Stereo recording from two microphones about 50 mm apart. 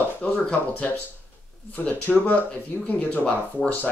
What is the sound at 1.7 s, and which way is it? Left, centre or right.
Speech, left.